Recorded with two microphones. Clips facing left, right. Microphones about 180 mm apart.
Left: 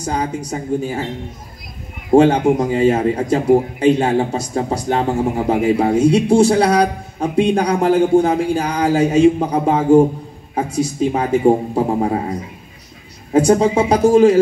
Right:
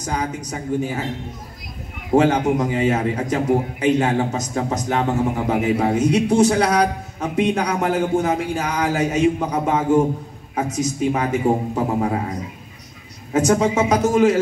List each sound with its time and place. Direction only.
0.0 s a man's voice: 30° left (ahead or behind)
2.1 s a man's voice: 30° left (ahead or behind)